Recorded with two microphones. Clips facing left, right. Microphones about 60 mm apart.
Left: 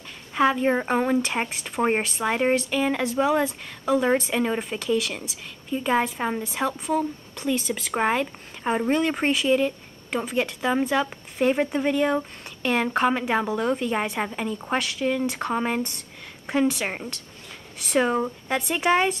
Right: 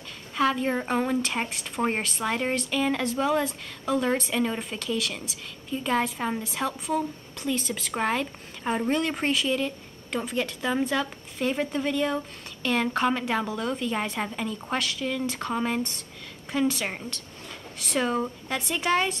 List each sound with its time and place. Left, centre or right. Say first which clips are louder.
0.3 s speech: left 4 dB; centre
1.9 s a woman's voice: left 4 dB; centre
7.9 s a woman's voice: left 4 dB; centre